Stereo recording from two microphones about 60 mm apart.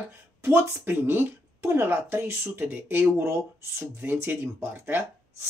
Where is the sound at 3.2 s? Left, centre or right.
Right.